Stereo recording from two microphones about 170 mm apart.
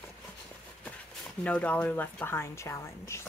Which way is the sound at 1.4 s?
10° left (ahead or behind).